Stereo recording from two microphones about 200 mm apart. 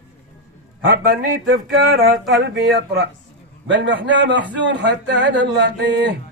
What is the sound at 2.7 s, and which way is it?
Speech, 55° right (ahead or behind).